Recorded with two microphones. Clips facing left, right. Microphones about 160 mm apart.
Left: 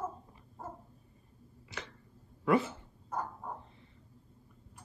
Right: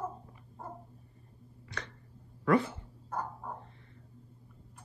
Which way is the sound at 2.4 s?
20° left (ahead or behind).